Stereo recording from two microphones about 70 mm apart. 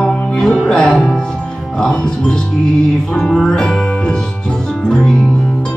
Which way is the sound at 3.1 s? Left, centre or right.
Centre.